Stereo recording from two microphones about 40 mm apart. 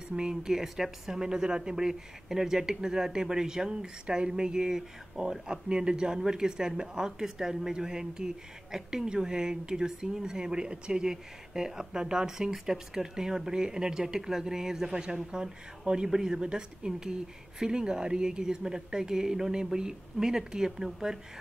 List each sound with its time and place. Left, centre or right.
0.1 s speech: centre
1.2 s speech: centre